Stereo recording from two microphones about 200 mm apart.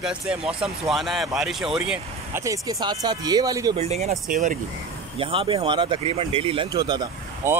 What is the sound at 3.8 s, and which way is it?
Speech, 35° right (ahead or behind).